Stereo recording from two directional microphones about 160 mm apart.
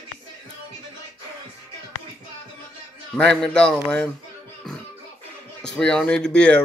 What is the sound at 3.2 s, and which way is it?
Speech, 5° left (ahead or behind).